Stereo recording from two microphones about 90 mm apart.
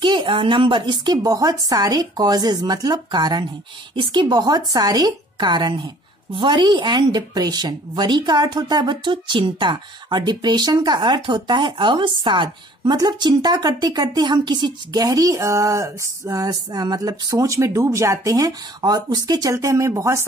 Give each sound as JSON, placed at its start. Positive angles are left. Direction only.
{"t": 0.0, "sound": "a woman's voice", "side_deg": -70}
{"t": 12.9, "sound": "speech", "side_deg": -50}